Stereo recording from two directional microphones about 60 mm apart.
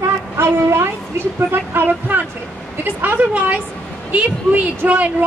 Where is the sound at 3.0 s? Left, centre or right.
Right.